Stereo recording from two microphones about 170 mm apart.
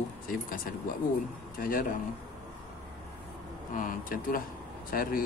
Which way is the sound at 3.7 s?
55° left (ahead or behind).